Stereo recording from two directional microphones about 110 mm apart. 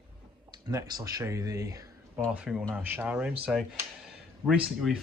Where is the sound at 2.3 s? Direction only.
10° right (ahead or behind).